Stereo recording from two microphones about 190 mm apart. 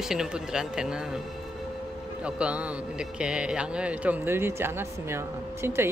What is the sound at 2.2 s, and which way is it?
A man's voice, 5° right (ahead or behind).